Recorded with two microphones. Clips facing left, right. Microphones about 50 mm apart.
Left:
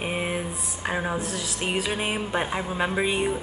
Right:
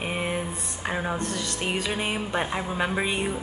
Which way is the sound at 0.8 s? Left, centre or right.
Centre.